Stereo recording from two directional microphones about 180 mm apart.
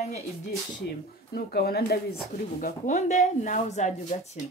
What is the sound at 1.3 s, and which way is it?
Speech, 60° left (ahead or behind).